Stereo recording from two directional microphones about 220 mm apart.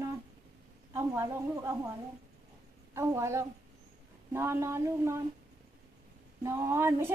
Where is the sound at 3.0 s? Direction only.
15° right (ahead or behind).